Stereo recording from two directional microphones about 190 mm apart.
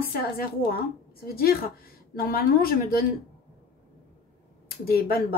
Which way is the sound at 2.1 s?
50° left (ahead or behind).